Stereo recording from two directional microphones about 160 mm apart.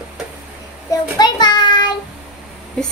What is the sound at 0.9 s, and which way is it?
Child singing, 25° left (ahead or behind).